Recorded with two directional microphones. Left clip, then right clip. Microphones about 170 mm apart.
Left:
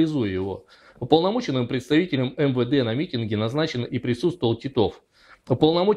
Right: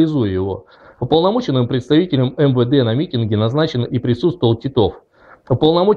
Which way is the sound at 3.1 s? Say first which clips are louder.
Right 7 dB; 45° left (ahead or behind).